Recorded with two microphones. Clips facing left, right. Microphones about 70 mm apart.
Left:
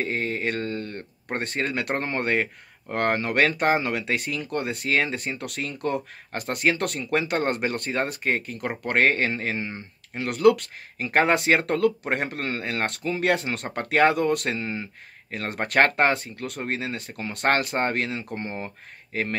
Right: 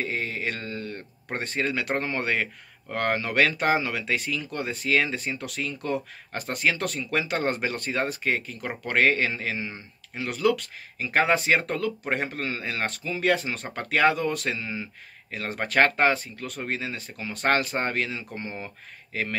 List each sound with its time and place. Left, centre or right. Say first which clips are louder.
0.0 s speech: left 3 dB; left